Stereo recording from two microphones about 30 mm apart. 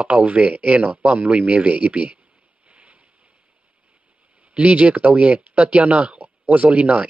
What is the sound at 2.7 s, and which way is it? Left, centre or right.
Boat, right.